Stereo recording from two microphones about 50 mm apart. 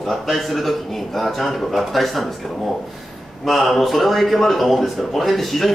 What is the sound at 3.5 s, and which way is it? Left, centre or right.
Speech, centre.